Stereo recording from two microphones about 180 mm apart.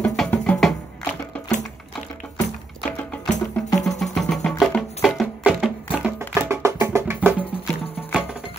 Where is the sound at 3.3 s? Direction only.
20° left (ahead or behind).